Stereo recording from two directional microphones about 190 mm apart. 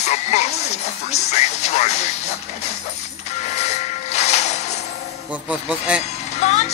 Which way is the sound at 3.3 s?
35° left (ahead or behind).